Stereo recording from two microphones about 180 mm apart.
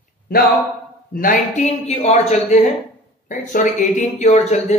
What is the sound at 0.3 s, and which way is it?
A man's voice, 55° left (ahead or behind).